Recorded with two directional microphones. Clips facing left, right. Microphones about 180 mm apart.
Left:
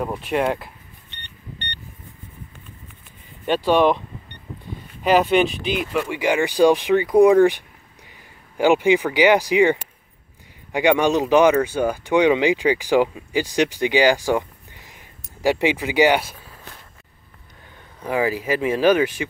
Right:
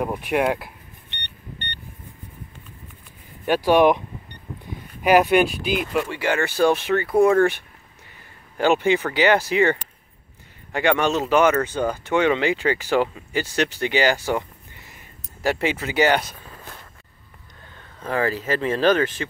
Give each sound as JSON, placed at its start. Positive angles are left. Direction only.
{"t": 0.0, "sound": "speech", "side_deg": -10}
{"t": 3.4, "sound": "speech", "side_deg": -10}
{"t": 5.0, "sound": "speech", "side_deg": -10}
{"t": 6.0, "sound": "speech", "side_deg": 15}
{"t": 17.7, "sound": "speech", "side_deg": 10}